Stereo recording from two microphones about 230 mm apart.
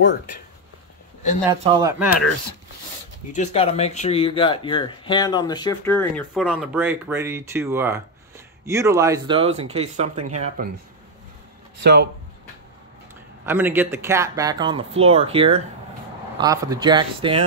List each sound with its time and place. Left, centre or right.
1.5 s speech: centre
3.3 s speech: left; by 10.7 s right
11.8 s speech: right
13.5 s speech: centre